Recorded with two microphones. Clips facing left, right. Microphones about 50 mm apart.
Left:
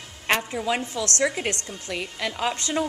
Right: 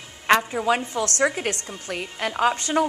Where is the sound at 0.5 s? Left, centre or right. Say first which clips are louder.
Right 4 dB; right.